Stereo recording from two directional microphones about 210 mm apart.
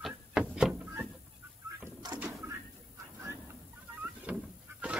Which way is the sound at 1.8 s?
15° right (ahead or behind).